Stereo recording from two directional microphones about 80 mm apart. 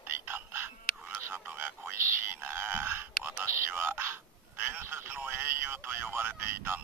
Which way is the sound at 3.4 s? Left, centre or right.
Right.